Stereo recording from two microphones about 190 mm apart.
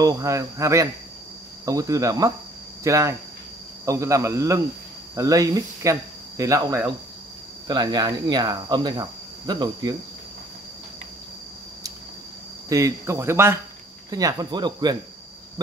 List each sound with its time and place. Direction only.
0.0 s speech: 15° right (ahead or behind)
7.6 s cricket: 20° right (ahead or behind)
12.6 s speech: 15° right (ahead or behind)
14.1 s cricket: 20° right (ahead or behind)